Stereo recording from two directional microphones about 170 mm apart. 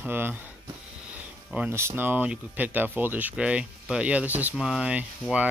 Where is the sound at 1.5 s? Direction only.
10° right (ahead or behind).